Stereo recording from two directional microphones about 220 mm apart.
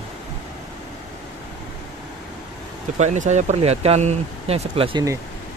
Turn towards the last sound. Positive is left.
turn(degrees=-15)  # may be behind; listen again after turning